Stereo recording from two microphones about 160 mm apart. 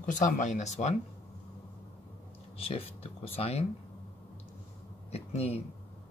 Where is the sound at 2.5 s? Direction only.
35° left (ahead or behind).